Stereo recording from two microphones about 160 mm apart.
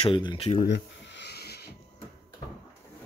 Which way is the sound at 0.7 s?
90° left.